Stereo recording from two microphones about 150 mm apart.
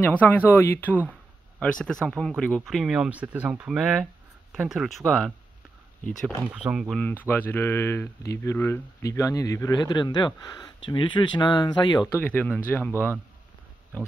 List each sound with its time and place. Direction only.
0.0 s speech: 10° left (ahead or behind)
6.4 s speech: 5° right (ahead or behind)
6.9 s speech: 10° left (ahead or behind); by 12.1 s 30° left (ahead or behind)
12.1 s speech: 10° left (ahead or behind)